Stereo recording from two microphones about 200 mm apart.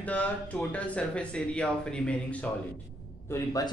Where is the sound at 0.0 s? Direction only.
5° left (ahead or behind).